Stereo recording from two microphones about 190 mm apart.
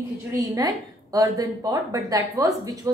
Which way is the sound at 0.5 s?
20° right (ahead or behind).